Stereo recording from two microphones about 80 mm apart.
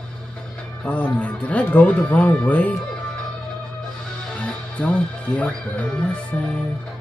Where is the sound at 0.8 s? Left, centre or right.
Centre.